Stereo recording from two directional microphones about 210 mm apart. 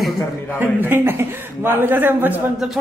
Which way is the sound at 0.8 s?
10° right (ahead or behind).